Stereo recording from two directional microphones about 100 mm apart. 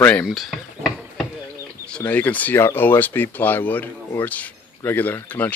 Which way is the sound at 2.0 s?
15° left (ahead or behind).